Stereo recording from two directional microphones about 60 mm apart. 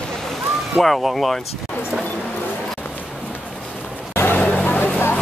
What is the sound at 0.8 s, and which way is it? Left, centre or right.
Speech, centre.